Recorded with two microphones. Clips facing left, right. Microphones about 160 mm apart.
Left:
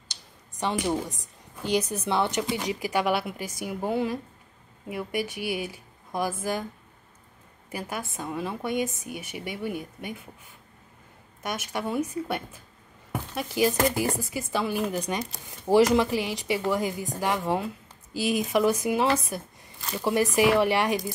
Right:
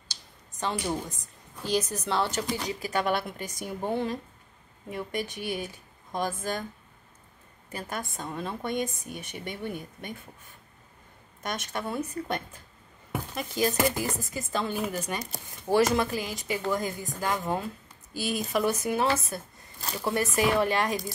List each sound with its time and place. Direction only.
0.6 s speech: 15° left (ahead or behind)
7.7 s speech: 10° left (ahead or behind)
11.4 s speech: 5° left (ahead or behind)